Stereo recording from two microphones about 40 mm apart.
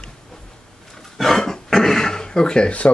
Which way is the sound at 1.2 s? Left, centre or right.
Centre.